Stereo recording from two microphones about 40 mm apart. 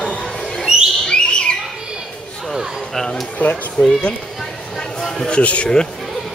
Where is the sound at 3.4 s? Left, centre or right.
Left.